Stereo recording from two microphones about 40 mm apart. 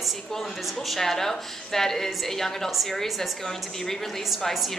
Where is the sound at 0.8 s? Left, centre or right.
Centre.